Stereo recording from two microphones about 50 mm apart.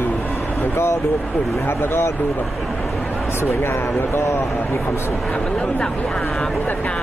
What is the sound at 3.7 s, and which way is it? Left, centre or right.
Speech, left.